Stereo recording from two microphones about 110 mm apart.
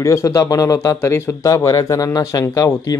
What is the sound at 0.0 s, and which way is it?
Speech, 30° left (ahead or behind).